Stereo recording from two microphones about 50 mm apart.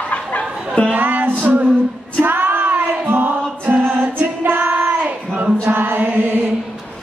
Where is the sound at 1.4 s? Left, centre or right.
Right.